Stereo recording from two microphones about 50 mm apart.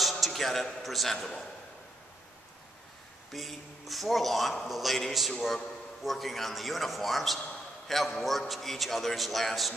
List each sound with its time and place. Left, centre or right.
0.0 s a man's voice: centre
1.1 s a man's voice: centre
3.3 s a man's voice: centre